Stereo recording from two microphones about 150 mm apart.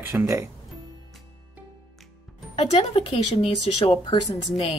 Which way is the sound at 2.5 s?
35° left (ahead or behind).